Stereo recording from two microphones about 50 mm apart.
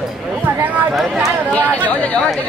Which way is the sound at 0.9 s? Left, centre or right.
Centre.